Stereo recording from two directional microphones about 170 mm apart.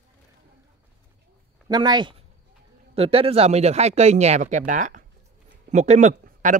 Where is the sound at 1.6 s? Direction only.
25° right (ahead or behind).